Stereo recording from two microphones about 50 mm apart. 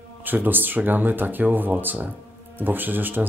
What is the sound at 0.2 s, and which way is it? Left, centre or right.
Speech, right.